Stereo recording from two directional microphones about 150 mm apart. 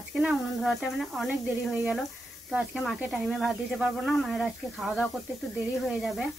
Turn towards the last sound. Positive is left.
turn(degrees=0)  # may be behind; listen again after turning